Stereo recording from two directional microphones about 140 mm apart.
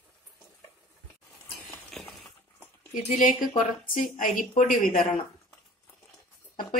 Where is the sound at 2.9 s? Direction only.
75° left (ahead or behind).